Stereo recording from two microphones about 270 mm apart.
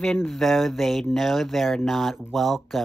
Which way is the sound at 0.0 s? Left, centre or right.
Centre.